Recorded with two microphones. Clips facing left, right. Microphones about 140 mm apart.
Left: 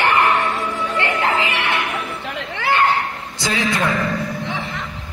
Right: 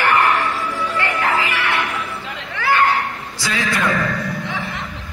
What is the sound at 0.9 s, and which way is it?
Music, 20° left (ahead or behind).